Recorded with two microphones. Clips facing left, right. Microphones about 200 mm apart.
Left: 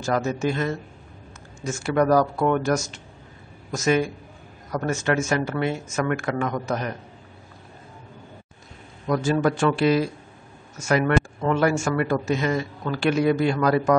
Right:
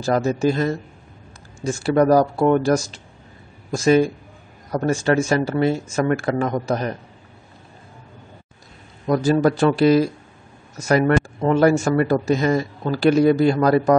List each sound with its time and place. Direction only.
0.0 s speech: 30° right (ahead or behind)
9.0 s speech: 35° right (ahead or behind)